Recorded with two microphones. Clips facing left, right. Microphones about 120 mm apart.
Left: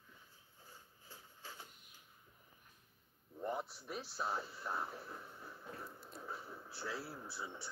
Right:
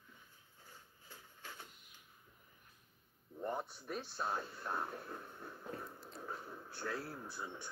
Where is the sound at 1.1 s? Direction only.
30° left (ahead or behind).